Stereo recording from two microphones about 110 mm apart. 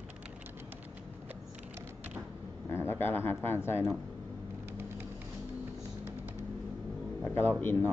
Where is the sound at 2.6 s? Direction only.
20° left (ahead or behind).